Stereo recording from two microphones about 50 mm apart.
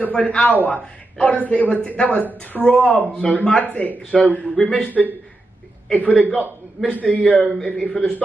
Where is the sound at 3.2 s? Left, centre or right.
Centre.